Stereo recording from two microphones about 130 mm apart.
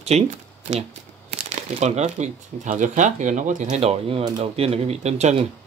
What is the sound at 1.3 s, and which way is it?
Speech, 60° right (ahead or behind).